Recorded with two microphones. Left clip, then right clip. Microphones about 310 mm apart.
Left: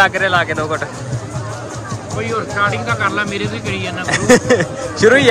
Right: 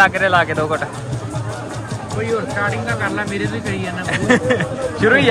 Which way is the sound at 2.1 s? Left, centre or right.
Centre.